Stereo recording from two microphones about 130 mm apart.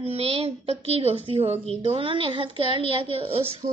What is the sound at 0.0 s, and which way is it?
A woman's voice, 50° right (ahead or behind).